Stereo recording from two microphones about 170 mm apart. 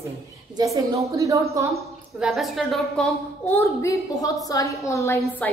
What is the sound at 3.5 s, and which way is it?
A woman's voice, 20° left (ahead or behind).